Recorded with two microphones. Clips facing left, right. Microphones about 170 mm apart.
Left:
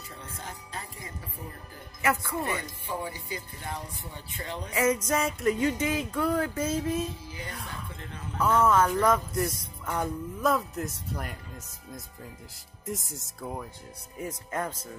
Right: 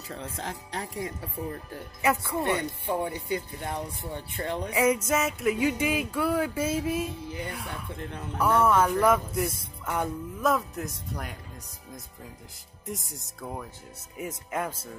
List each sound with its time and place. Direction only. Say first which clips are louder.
0.1 s speech: right 7 dB; 90° right
2.0 s music: right 2 dB; 20° right (ahead or behind)
2.6 s speech: right 6 dB; 60° right (ahead or behind)
4.7 s music: right 1 dB; 10° right (ahead or behind)
9.8 s speech: right 1 dB; 5° right (ahead or behind)
12.8 s speech: left 2 dB; centre (ahead or behind)
14.1 s music: right 1 dB; 10° right (ahead or behind)